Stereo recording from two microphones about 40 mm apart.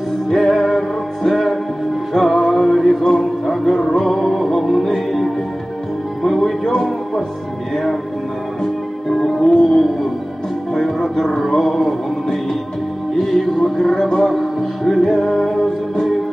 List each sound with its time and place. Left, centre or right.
0.3 s music: centre
9.1 s music: centre